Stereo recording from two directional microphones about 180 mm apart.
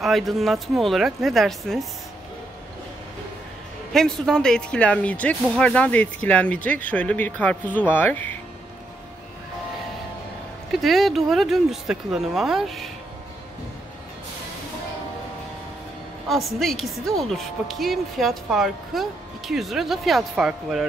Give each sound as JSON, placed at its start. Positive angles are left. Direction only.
{"t": 0.0, "sound": "speech", "side_deg": 0}
{"t": 3.9, "sound": "speech", "side_deg": 5}
{"t": 10.7, "sound": "speech", "side_deg": 0}
{"t": 16.3, "sound": "speech", "side_deg": 0}